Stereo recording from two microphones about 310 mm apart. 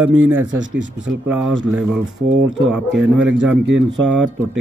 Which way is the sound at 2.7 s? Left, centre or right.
Centre.